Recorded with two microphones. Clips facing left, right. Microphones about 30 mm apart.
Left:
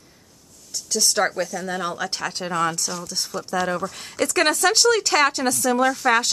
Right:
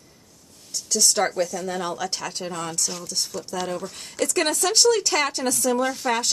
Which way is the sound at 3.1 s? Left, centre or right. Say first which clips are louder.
Left 3 dB; centre.